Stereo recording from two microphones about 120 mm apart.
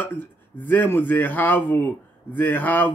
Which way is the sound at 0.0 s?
15° left (ahead or behind).